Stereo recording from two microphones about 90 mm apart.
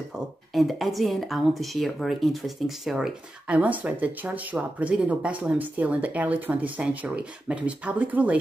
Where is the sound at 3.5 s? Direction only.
15° right (ahead or behind).